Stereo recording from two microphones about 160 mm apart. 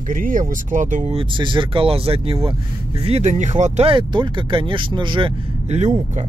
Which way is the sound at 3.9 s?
30° right (ahead or behind).